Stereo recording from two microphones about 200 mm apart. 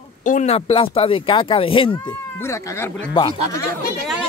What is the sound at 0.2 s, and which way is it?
Speech, 40° left (ahead or behind).